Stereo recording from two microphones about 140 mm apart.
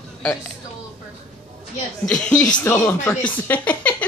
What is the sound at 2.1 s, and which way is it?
A woman's voice, 5° left (ahead or behind).